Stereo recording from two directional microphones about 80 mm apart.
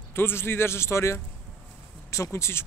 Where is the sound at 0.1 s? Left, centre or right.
Left.